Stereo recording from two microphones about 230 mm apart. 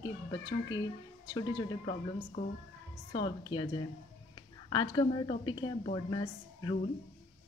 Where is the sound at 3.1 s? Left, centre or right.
Left.